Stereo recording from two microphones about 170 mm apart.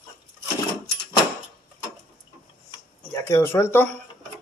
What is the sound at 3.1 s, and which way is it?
Speech, 15° left (ahead or behind).